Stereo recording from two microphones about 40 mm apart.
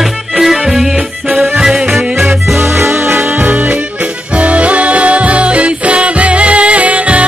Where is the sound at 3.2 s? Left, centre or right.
Right.